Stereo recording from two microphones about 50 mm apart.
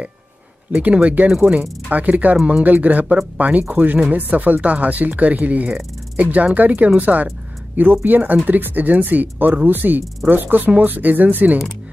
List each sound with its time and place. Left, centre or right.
0.7 s speech: right